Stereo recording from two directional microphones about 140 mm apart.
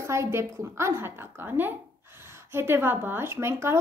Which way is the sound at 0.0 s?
20° right (ahead or behind).